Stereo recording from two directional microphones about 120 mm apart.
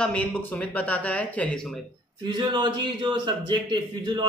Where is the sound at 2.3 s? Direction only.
40° right (ahead or behind).